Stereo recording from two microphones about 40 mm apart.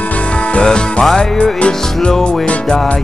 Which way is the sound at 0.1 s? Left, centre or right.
Left.